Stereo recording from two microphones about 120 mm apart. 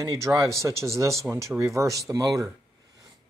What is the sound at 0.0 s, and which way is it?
Speech, 25° right (ahead or behind).